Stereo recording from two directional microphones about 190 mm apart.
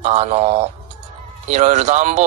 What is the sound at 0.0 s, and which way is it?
Speech, 35° right (ahead or behind).